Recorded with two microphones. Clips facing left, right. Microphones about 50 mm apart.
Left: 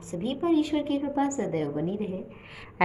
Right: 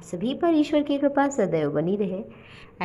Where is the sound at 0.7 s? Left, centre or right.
Right.